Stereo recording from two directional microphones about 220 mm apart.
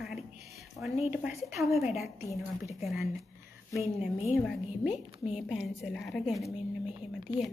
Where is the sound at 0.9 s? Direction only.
30° left (ahead or behind).